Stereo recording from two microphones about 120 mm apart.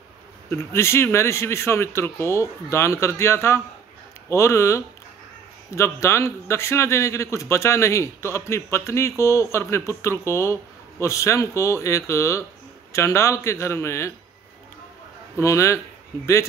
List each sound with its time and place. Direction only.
0.5 s a man's voice: 20° left (ahead or behind)
15.3 s a man's voice: 25° left (ahead or behind)